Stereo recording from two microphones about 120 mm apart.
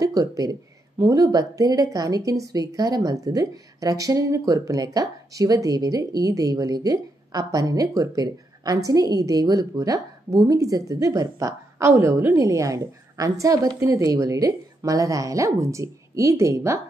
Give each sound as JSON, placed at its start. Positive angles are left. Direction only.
{"t": 0.0, "sound": "speech", "side_deg": -30}